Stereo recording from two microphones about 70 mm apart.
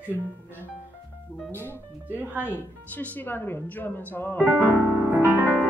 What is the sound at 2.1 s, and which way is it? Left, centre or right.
Speech, right.